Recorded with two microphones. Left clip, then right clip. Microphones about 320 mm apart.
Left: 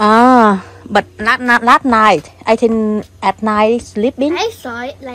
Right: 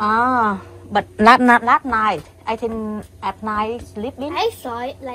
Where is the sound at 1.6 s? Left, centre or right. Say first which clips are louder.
Left 7 dB; centre.